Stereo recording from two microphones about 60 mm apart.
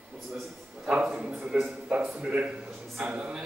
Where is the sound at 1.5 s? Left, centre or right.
Right.